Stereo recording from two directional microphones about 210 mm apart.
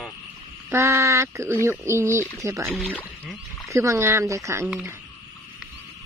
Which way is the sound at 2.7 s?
5° left (ahead or behind).